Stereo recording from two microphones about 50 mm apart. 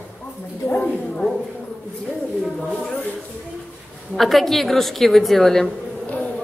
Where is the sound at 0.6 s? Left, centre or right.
Left.